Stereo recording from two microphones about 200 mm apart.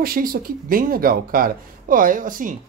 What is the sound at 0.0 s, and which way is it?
Speech, 45° right (ahead or behind).